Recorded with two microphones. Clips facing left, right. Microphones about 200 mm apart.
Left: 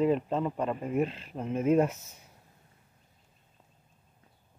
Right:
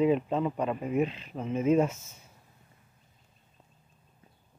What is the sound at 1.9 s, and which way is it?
Speech, 15° left (ahead or behind).